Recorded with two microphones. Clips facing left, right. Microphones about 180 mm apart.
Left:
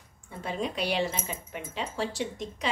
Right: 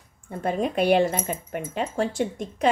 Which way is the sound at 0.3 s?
50° right (ahead or behind).